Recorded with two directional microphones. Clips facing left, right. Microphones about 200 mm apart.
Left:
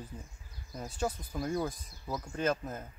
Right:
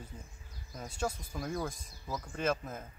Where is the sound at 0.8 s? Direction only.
5° left (ahead or behind).